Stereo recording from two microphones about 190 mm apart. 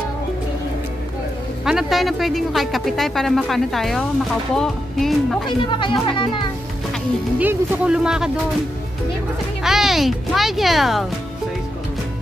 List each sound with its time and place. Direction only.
1.6 s speech: centre (ahead or behind)
5.8 s speech: 25° left (ahead or behind)
7.3 s speech: 10° right (ahead or behind)
9.6 s speech: centre (ahead or behind)